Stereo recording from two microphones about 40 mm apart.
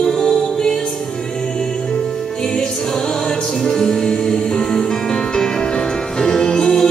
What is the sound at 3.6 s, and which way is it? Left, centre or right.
Music, centre.